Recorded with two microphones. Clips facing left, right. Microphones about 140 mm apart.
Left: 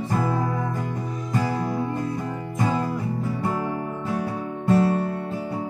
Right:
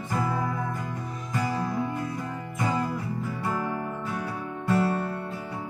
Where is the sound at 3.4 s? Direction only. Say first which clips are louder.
Left 3 dB; 25° left (ahead or behind).